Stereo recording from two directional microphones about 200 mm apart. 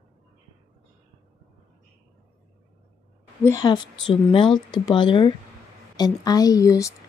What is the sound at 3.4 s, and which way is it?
A woman's voice, 20° left (ahead or behind).